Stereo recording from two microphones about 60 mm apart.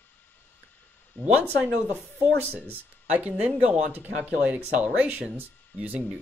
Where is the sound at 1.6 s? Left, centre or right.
Right.